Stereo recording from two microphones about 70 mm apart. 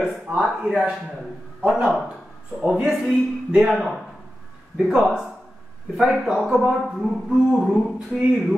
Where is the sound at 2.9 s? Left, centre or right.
Centre.